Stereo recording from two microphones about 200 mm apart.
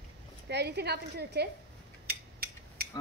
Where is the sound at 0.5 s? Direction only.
55° right (ahead or behind).